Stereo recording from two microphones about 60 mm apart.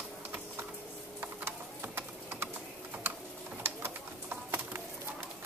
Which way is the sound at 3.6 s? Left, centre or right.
Right.